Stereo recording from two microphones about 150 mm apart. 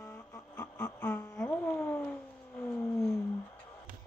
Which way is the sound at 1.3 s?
5° left (ahead or behind).